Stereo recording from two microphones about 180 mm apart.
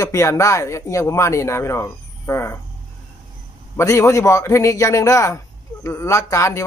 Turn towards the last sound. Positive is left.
turn(degrees=15)  # may be behind; listen again after turning